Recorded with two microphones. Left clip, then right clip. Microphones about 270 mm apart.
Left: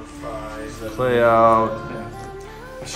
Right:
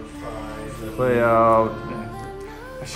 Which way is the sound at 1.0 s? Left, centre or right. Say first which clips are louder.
Left 2 dB; centre.